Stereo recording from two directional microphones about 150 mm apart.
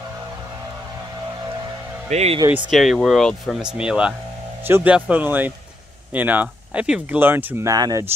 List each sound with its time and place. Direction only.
2.0 s speech: 45° right (ahead or behind)
2.5 s speech: centre (ahead or behind); by 8.0 s 25° right (ahead or behind)